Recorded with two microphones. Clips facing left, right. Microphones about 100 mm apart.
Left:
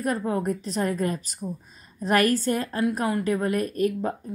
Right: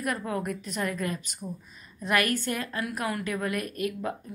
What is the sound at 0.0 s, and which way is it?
A woman's voice, 30° left (ahead or behind).